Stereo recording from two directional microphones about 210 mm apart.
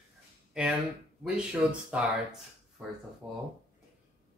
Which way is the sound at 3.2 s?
10° right (ahead or behind).